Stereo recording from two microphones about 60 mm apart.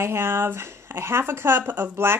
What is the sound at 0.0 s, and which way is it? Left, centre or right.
Speech, right.